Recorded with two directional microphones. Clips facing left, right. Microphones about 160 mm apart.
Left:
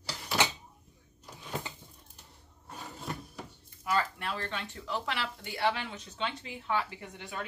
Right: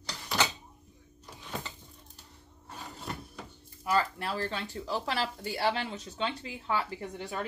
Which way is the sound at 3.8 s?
35° right (ahead or behind).